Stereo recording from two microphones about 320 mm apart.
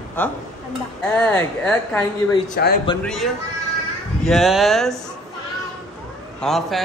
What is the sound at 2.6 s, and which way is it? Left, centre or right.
Speech, left.